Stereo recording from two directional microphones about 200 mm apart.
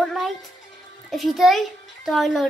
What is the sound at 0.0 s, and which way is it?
Music, centre (ahead or behind).